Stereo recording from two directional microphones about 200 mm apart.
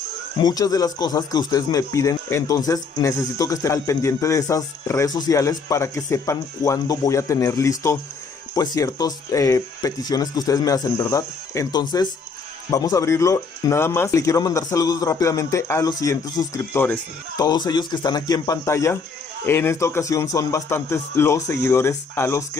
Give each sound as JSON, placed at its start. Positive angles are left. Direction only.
{"t": 0.4, "sound": "speech", "side_deg": 20}